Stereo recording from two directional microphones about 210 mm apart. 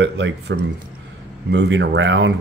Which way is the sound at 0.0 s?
60° right (ahead or behind).